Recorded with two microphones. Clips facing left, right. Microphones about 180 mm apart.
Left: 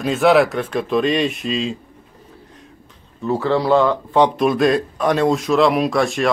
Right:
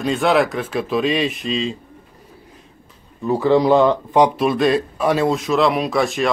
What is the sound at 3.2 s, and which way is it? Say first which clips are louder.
Speech: right 3 dB; 15° right (ahead or behind).